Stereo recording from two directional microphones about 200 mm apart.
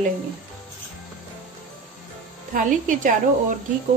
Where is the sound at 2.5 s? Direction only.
40° right (ahead or behind).